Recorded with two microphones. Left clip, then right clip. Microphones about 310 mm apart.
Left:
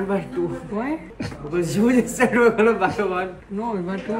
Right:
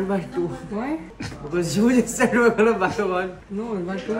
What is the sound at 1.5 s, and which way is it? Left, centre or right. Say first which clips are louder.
A man's voice: left 1 dB; centre.